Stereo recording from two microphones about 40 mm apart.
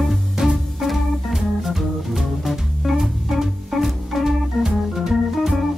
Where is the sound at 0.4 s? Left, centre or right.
Centre.